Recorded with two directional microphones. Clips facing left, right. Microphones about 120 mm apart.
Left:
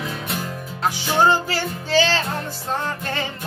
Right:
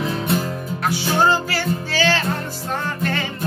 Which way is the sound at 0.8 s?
15° left (ahead or behind).